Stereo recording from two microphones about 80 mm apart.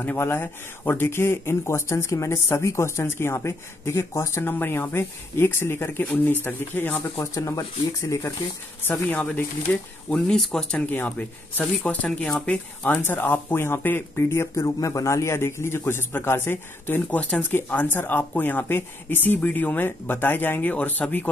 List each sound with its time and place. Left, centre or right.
0.0 s speech: left
7.3 s speech: left
8.8 s a man's voice: left
10.0 s speech: centre
10.9 s a man's voice: left
12.3 s speech: centre
13.0 s a man's voice: left
14.6 s a man's voice: left